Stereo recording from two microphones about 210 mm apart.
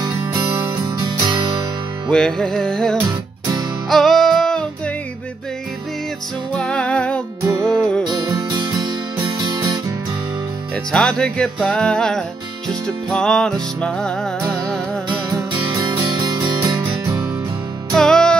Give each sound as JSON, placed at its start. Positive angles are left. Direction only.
{"t": 0.0, "sound": "music", "side_deg": -15}
{"t": 2.0, "sound": "music", "side_deg": 5}
{"t": 6.5, "sound": "music", "side_deg": 5}
{"t": 7.4, "sound": "music", "side_deg": -15}
{"t": 7.7, "sound": "music", "side_deg": 5}
{"t": 8.1, "sound": "music", "side_deg": -20}
{"t": 10.9, "sound": "music", "side_deg": 5}
{"t": 15.2, "sound": "music", "side_deg": -15}
{"t": 17.9, "sound": "music", "side_deg": 5}